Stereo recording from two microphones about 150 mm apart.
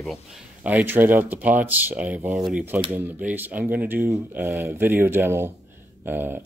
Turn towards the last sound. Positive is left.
turn(degrees=-15)  # may be behind; listen again after turning